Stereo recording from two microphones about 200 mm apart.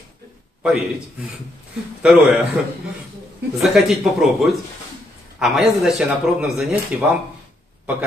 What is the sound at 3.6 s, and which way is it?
Speech, centre (ahead or behind).